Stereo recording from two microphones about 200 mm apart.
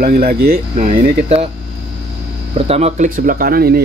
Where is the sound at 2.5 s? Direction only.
30° right (ahead or behind); by 3.8 s 50° right (ahead or behind).